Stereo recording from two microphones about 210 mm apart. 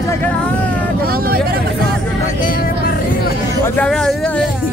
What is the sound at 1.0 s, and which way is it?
Vehicle, 45° right (ahead or behind).